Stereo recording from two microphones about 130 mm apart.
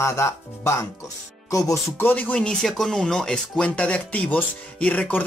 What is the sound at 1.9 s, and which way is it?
Speech, 15° left (ahead or behind).